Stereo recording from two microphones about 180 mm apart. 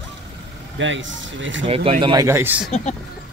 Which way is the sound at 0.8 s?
90° right.